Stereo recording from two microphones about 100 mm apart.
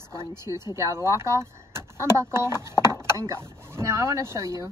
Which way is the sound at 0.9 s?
30° right (ahead or behind).